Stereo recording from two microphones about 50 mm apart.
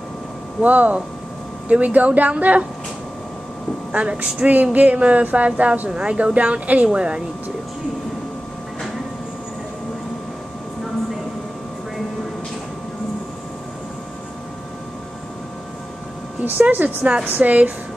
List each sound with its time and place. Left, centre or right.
0.6 s a woman's voice: right
3.9 s a woman's voice: right
16.4 s a woman's voice: right